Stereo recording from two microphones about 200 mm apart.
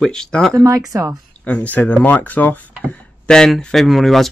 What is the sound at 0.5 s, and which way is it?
Speech, 20° right (ahead or behind).